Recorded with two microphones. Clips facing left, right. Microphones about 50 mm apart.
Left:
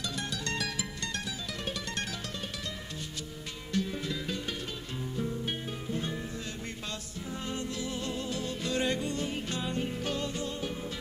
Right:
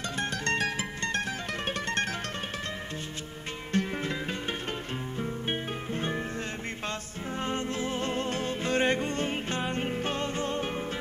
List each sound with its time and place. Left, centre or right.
0.2 s music: right
3.7 s music: right
7.4 s music: right